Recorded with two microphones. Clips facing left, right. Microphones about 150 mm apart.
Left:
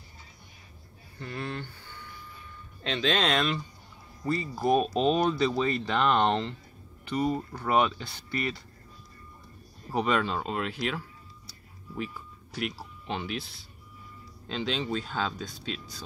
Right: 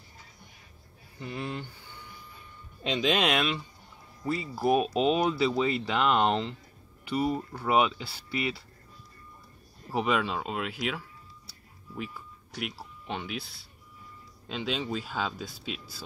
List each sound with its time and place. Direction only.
1.2 s speech: 10° right (ahead or behind)
9.8 s speech: 5° right (ahead or behind)